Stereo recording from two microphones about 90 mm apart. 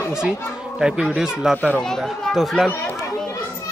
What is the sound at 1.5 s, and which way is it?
Speech, 15° left (ahead or behind).